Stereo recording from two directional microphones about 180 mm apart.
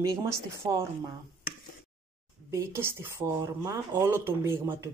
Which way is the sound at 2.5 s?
15° right (ahead or behind).